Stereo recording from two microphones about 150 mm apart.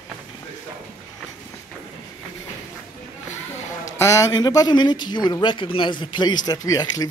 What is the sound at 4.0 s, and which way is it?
A man's voice, 20° left (ahead or behind).